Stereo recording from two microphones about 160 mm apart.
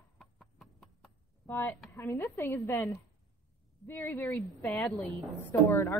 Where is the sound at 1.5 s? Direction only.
15° left (ahead or behind).